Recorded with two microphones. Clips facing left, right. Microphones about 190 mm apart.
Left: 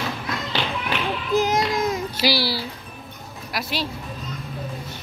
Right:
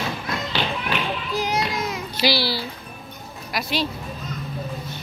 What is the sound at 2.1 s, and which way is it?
A child's voice, 10° left (ahead or behind).